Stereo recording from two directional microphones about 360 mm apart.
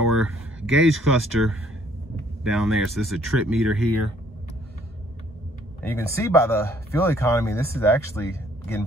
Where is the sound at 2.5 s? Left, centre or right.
Centre.